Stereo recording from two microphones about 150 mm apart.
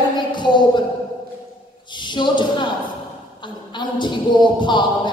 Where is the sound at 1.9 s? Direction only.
30° left (ahead or behind).